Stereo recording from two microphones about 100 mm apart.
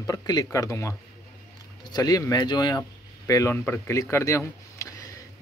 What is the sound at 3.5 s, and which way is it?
Speech, 20° left (ahead or behind).